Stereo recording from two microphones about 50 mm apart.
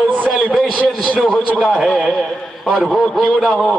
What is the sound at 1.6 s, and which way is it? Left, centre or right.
A man's voice, centre.